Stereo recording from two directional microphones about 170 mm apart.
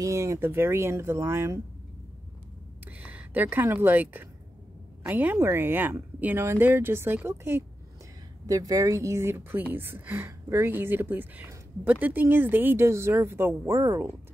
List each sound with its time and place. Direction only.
0.0 s a woman's voice: 15° right (ahead or behind)
3.0 s a woman's voice: 10° right (ahead or behind)